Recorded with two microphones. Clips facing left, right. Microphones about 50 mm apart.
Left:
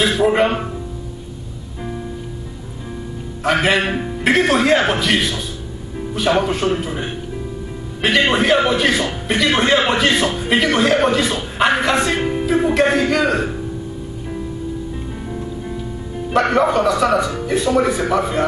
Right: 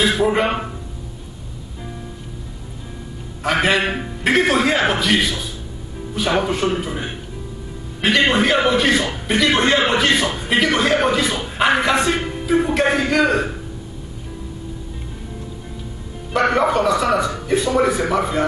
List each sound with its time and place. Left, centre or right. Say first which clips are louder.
0.2 s a man's voice: left 3 dB; centre
3.4 s a man's voice: left 1 dB; centre
12.2 s music: left 6 dB; centre
12.4 s music: left 1 dB; centre
12.9 s a man's voice: left 1 dB; centre
16.3 s a man's voice: left 1 dB; centre